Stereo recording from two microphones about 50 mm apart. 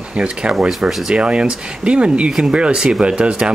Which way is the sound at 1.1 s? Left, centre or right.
Right.